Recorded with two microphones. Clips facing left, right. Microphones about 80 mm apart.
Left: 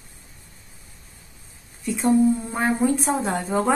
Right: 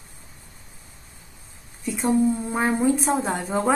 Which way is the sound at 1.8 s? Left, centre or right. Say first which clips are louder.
Left 2 dB; centre.